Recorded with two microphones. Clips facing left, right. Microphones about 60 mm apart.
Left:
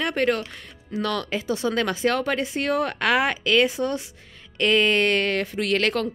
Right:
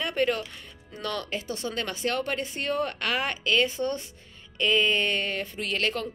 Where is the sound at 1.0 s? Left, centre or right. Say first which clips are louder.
Left 5 dB; left.